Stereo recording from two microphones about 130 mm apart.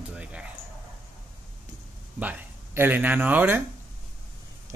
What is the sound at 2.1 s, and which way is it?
Speech, 10° right (ahead or behind).